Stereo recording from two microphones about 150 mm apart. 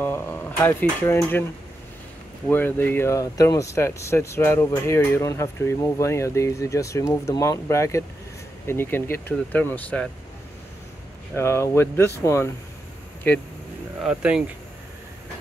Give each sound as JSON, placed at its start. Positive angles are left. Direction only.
{"t": 0.0, "sound": "dishes", "side_deg": 15}
{"t": 2.4, "sound": "speech", "side_deg": 15}
{"t": 11.3, "sound": "speech", "side_deg": 15}
{"t": 14.0, "sound": "speech", "side_deg": -5}